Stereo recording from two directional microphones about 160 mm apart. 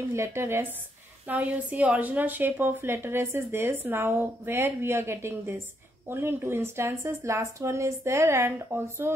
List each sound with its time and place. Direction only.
0.1 s a woman's voice: 15° right (ahead or behind)